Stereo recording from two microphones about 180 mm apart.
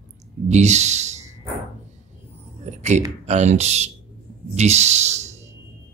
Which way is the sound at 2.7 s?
40° right (ahead or behind).